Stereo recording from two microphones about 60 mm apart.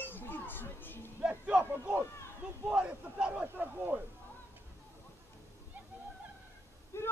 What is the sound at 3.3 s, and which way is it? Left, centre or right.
Speech, right.